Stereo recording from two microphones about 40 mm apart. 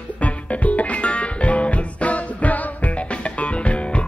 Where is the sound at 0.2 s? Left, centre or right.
Left.